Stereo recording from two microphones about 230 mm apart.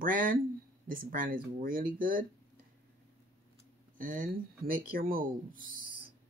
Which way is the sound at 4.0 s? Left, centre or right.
Right.